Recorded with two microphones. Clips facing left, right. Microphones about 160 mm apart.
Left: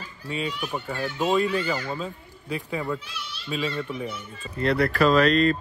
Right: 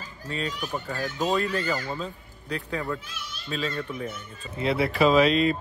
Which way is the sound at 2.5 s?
20° left (ahead or behind).